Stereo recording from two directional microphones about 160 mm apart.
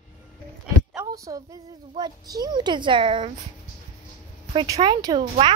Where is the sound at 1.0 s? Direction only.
20° right (ahead or behind).